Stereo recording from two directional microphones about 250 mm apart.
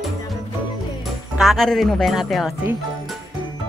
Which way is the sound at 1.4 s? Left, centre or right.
Centre.